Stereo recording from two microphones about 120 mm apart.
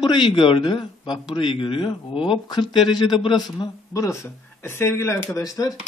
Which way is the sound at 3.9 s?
25° left (ahead or behind).